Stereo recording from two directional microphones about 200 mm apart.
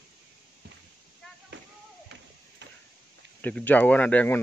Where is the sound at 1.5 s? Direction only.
65° right (ahead or behind).